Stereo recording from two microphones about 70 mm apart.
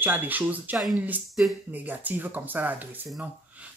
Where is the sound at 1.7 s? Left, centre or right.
Right.